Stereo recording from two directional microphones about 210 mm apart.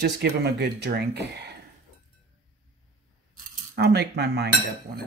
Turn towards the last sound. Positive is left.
turn(degrees=-50)  # may be behind; listen again after turning